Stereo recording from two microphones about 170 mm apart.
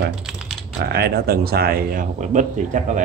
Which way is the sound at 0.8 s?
70° right (ahead or behind).